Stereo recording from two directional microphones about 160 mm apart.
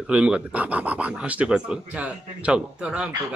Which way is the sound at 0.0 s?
5° right (ahead or behind).